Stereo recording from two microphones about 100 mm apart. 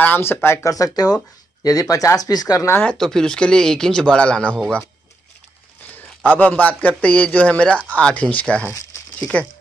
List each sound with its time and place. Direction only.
0.0 s speech: 20° left (ahead or behind)
0.7 s speech: 35° left (ahead or behind)
2.7 s a man's voice: 15° left (ahead or behind)
6.3 s a man's voice: 15° left (ahead or behind)